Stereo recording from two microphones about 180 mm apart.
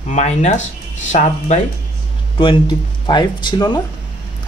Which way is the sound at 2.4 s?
25° left (ahead or behind).